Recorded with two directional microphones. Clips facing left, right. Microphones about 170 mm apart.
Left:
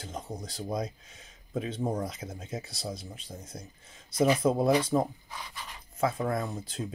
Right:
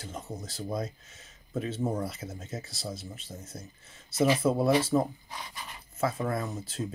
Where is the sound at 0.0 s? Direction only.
5° right (ahead or behind).